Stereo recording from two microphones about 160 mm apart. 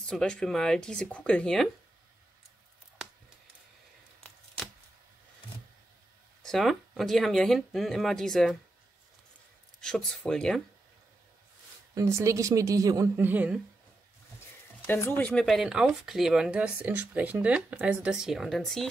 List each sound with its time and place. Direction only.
0.0 s speech: 5° left (ahead or behind)
6.4 s speech: centre (ahead or behind)
9.8 s speech: 5° left (ahead or behind)
11.9 s a woman's voice: 20° right (ahead or behind)
14.9 s speech: 15° left (ahead or behind)